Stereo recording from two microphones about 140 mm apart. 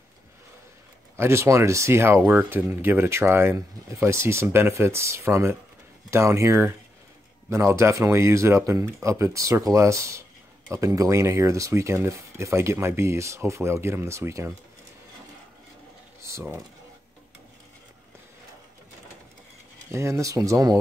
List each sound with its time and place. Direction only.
1.1 s speech: 20° right (ahead or behind)
16.2 s typing: 20° right (ahead or behind)
19.9 s speech: 20° right (ahead or behind)